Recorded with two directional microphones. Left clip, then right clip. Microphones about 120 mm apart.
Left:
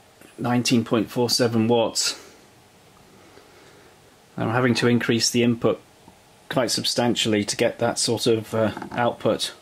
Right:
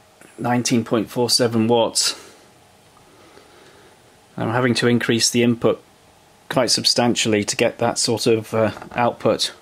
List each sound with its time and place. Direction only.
0.4 s speech: 5° right (ahead or behind)
4.4 s speech: 10° right (ahead or behind); by 9.6 s 25° right (ahead or behind)